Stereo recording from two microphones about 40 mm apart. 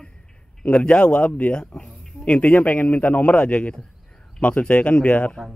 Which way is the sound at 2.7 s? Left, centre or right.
Left.